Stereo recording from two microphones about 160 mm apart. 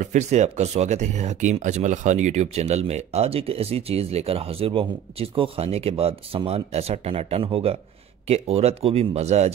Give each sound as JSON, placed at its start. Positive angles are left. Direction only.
{"t": 0.0, "sound": "speech", "side_deg": -50}